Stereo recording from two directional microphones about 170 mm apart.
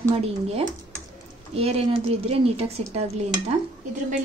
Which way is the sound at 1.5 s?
35° right (ahead or behind).